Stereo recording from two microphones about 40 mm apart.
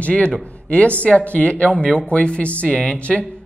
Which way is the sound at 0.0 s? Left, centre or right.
Left.